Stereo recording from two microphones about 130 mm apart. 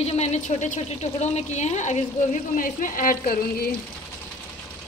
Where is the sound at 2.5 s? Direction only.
90° left.